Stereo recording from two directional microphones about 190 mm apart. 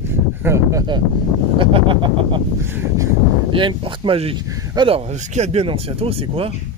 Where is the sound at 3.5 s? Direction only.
25° right (ahead or behind).